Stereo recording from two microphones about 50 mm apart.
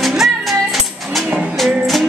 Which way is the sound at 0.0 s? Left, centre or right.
Centre.